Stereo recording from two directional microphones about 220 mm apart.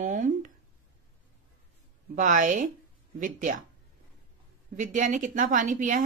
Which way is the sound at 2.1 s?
35° right (ahead or behind).